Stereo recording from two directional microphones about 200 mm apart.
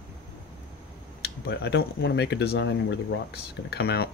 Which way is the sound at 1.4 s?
55° left (ahead or behind).